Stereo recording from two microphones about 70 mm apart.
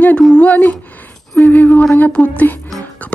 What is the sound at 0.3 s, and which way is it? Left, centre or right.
Speech, left.